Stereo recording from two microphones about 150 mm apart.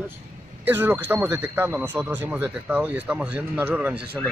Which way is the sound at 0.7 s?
15° right (ahead or behind).